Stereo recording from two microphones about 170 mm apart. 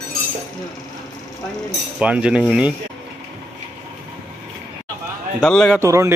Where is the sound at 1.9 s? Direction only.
5° right (ahead or behind).